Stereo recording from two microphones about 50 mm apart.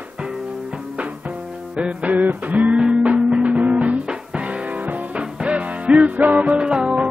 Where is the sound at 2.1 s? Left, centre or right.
Right.